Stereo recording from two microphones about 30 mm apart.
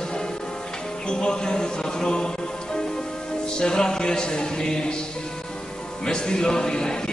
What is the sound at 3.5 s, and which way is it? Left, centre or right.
Speech, left.